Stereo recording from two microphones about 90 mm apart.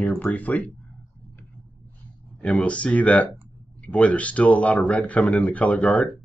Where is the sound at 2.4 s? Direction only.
15° left (ahead or behind).